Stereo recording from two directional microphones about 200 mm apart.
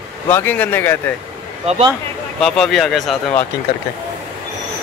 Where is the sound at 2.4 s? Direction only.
Centre (ahead or behind).